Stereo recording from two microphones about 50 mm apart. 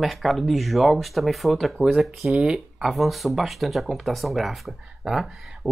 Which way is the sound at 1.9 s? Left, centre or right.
Centre.